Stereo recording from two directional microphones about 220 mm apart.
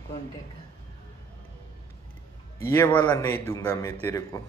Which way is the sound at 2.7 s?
10° left (ahead or behind).